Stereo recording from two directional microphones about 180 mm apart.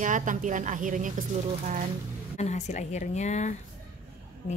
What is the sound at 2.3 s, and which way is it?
Speech, 40° left (ahead or behind).